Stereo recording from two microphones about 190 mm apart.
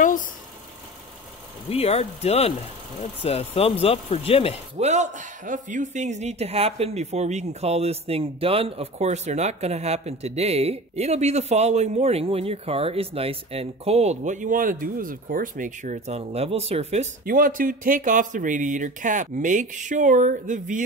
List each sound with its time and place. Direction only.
0.0 s vehicle: 45° left (ahead or behind)
1.7 s speech: 30° left (ahead or behind)
4.7 s speech: 35° right (ahead or behind)
17.2 s speech: 45° right (ahead or behind)